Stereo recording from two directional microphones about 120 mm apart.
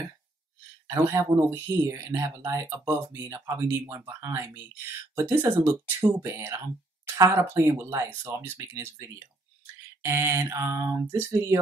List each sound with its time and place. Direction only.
0.8 s speech: 25° right (ahead or behind)
10.0 s speech: 20° right (ahead or behind)